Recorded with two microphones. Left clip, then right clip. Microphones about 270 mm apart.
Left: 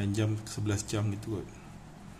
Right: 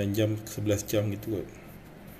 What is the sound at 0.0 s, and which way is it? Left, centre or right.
Speech, centre.